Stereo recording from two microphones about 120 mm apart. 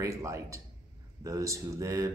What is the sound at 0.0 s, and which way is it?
Speech, 25° right (ahead or behind).